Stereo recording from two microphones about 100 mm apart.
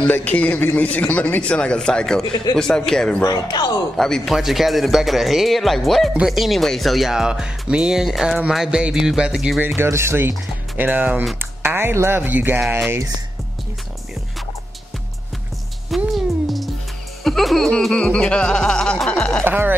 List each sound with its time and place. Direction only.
0.0 s a man's voice: 15° left (ahead or behind)
3.3 s speech: 40° left (ahead or behind)
3.9 s a man's voice: 5° left (ahead or behind)
9.8 s speech: 25° right (ahead or behind)
15.9 s music: centre (ahead or behind)
19.4 s speech: 20° right (ahead or behind)